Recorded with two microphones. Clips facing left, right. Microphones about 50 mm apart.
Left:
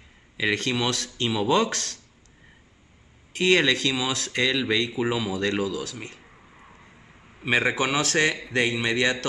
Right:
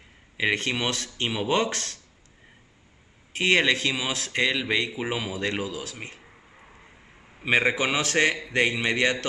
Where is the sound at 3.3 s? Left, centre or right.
Right.